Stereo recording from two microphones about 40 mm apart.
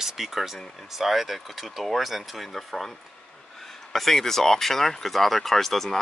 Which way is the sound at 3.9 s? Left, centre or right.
Centre.